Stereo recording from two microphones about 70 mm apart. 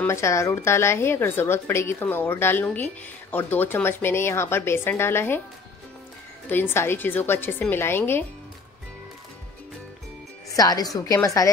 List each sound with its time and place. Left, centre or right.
0.1 s speech: left
6.5 s a woman's voice: left
10.5 s a woman's voice: left